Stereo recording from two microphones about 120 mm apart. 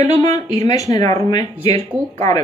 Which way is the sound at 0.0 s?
30° left (ahead or behind).